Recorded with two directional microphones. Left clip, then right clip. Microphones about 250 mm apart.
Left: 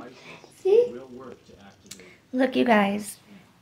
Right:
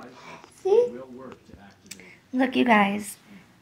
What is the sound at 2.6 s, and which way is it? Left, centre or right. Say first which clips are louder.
Speech: right 2 dB; centre.